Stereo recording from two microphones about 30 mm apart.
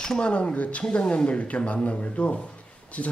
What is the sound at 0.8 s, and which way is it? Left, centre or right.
A man's voice, left.